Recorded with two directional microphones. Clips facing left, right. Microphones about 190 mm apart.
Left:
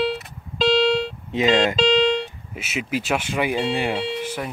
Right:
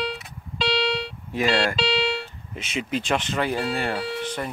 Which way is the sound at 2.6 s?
5° left (ahead or behind).